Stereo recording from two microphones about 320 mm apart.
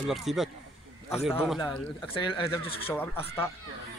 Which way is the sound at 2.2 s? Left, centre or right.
Centre.